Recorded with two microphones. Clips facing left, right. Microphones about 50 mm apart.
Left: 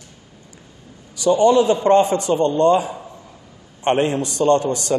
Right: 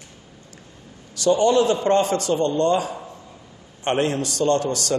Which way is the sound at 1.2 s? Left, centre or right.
Left.